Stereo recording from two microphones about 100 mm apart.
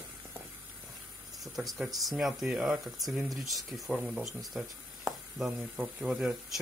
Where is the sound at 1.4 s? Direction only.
Centre (ahead or behind).